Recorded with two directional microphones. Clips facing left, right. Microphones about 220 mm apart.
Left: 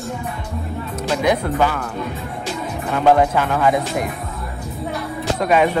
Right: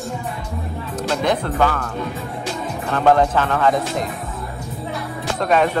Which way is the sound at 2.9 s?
10° left (ahead or behind).